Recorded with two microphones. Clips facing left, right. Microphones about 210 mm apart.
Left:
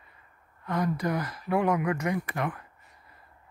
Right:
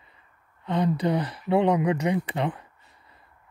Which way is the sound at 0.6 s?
25° right (ahead or behind).